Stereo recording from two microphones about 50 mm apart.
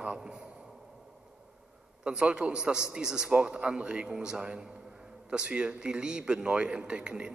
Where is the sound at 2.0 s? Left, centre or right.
Centre.